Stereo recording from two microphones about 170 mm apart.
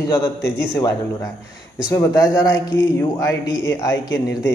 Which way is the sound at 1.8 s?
20° left (ahead or behind).